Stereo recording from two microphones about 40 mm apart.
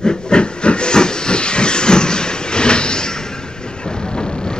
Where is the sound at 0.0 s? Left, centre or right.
Left.